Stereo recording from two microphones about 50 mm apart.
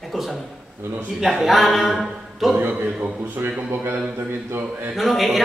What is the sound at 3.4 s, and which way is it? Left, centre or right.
Speech, right.